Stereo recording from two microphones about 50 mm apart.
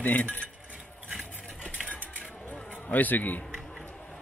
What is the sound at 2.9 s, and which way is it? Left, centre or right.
Speech, left.